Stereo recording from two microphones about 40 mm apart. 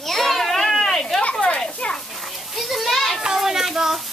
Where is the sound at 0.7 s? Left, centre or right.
Centre.